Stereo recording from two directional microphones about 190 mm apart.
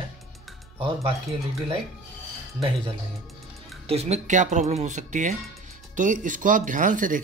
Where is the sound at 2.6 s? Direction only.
Centre (ahead or behind).